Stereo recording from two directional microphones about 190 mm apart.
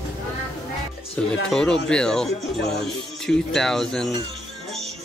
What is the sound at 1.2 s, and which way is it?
Speech, 5° left (ahead or behind).